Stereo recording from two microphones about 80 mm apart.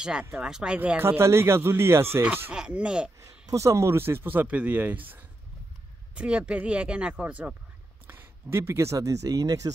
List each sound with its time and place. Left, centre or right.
0.2 s speech: centre
0.5 s speech: centre
0.7 s speech: right
2.5 s speech: centre
3.2 s speech: right
6.1 s speech: centre
8.1 s speech: right